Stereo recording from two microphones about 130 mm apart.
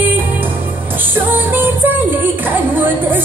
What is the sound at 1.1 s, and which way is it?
Music, 15° right (ahead or behind).